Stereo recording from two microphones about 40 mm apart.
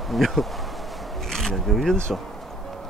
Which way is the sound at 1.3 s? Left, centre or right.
Centre.